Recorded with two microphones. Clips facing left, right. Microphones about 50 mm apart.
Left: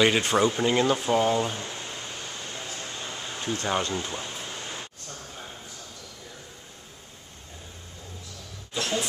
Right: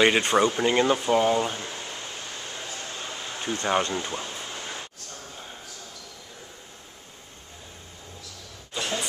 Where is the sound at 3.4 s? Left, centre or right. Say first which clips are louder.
Right 3 dB; centre.